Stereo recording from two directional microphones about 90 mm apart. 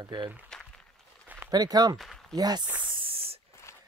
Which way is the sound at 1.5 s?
45° right (ahead or behind).